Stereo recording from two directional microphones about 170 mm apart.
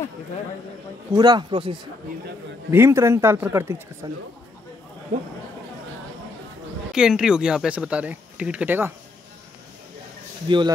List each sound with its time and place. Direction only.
1.1 s speech: 25° right (ahead or behind)
2.7 s speech: 15° right (ahead or behind)
6.9 s speech: 5° right (ahead or behind)
10.5 s speech: 30° right (ahead or behind)